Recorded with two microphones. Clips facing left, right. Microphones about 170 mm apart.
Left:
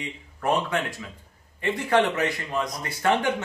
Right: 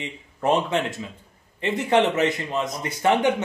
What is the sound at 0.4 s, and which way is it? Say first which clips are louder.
A man's voice: right 3 dB; 20° right (ahead or behind).